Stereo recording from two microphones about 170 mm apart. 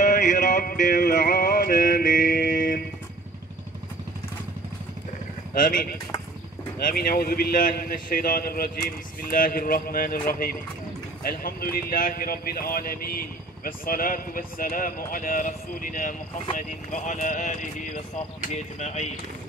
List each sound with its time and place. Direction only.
0.0 s music: 45° left (ahead or behind)
5.5 s speech: 55° left (ahead or behind)